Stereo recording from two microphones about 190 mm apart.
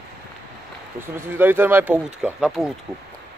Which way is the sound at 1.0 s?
10° right (ahead or behind).